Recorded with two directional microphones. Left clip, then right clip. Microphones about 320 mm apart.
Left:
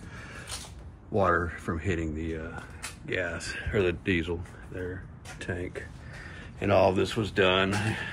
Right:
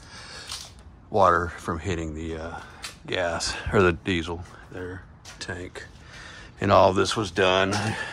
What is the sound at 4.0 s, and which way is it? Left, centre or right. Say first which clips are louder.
Speech: right 1 dB; centre.